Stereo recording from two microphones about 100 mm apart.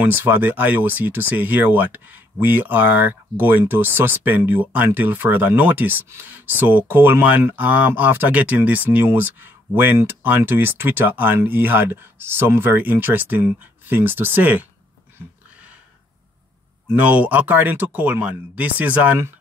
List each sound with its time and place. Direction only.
0.0 s speech: 20° right (ahead or behind)
15.1 s a sound: 15° right (ahead or behind)
16.8 s speech: 15° right (ahead or behind)